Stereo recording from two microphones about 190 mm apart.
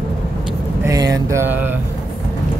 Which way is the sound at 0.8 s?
20° right (ahead or behind).